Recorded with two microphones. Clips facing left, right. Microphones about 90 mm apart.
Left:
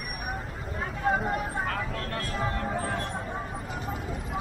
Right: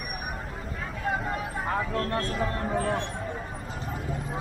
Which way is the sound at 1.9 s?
30° right (ahead or behind).